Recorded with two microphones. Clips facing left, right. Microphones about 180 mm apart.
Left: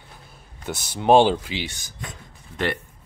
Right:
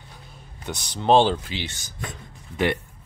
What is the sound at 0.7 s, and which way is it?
Speech, 10° left (ahead or behind).